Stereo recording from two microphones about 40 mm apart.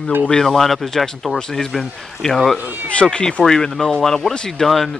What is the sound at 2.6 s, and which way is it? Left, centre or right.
Speech, right.